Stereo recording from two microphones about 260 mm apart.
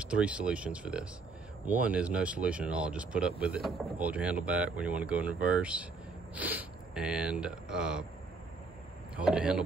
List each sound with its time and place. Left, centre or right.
0.0 s speech: centre
9.1 s speech: centre